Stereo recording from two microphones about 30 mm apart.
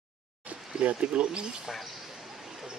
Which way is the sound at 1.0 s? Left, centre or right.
Right.